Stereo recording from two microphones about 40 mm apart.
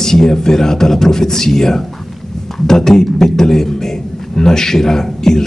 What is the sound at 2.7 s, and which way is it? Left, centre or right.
A man's voice, centre.